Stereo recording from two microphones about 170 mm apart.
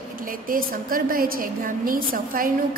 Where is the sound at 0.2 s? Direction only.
55° right (ahead or behind).